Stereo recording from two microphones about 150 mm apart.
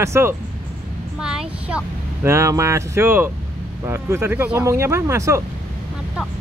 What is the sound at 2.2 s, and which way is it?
Speech, 20° right (ahead or behind).